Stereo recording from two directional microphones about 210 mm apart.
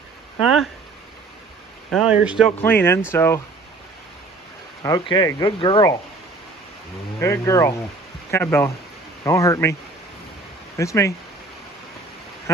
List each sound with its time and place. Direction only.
0.4 s speech: centre (ahead or behind)
1.9 s speech: centre (ahead or behind)
2.6 s speech: 10° left (ahead or behind)
4.8 s speech: 20° left (ahead or behind)
7.2 s speech: 15° left (ahead or behind)
10.8 s speech: 15° left (ahead or behind)
12.5 s quack: 10° left (ahead or behind)